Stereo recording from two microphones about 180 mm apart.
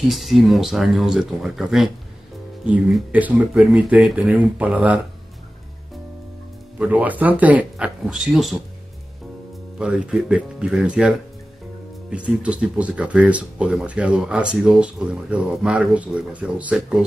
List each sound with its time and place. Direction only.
0.1 s speech: centre (ahead or behind)
6.8 s speech: 10° right (ahead or behind)
9.8 s speech: 5° right (ahead or behind)